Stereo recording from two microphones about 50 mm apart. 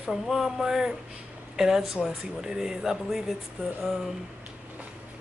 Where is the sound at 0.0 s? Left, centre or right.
Centre.